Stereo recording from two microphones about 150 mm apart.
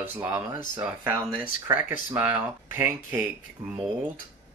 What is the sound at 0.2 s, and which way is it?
Speech, 15° right (ahead or behind).